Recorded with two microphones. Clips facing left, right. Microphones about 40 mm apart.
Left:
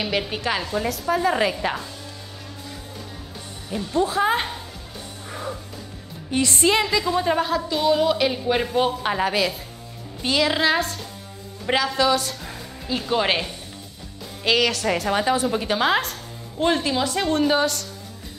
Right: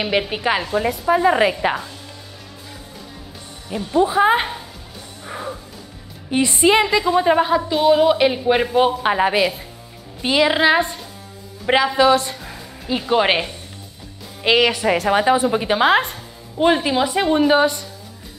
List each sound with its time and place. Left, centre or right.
0.0 s a woman's voice: centre
3.6 s a woman's voice: centre
5.2 s music: centre
6.3 s a woman's voice: centre